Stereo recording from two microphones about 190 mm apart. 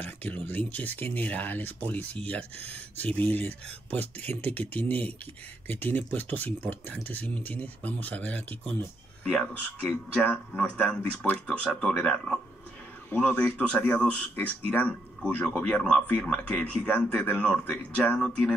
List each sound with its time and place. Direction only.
0.0 s speech: 10° left (ahead or behind)